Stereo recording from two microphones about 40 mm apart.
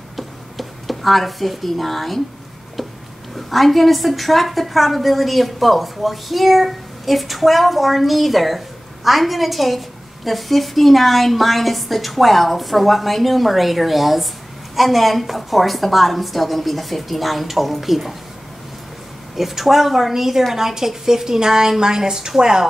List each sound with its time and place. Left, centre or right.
0.1 s a sound: centre
3.3 s a woman's voice: centre
19.3 s a woman's voice: centre